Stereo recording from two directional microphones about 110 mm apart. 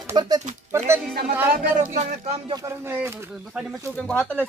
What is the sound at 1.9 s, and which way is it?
Speech, 90° right.